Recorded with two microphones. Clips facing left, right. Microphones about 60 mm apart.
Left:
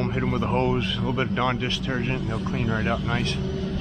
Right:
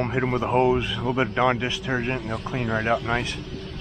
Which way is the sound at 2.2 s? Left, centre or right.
Right.